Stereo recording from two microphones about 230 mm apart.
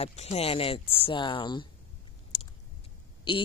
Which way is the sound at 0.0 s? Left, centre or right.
Left.